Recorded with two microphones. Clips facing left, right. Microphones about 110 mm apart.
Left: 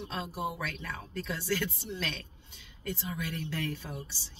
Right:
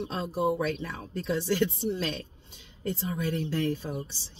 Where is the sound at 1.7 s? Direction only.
35° right (ahead or behind).